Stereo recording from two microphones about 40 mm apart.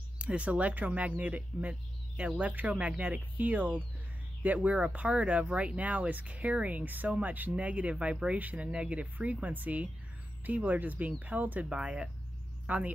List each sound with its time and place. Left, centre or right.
0.2 s speech: right
11.7 s speech: right